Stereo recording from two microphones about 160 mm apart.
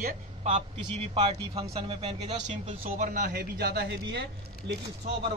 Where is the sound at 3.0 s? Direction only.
55° right (ahead or behind); by 4.7 s 90° right.